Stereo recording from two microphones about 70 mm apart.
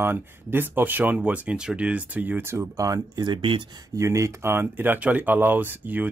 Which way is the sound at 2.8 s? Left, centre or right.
Right.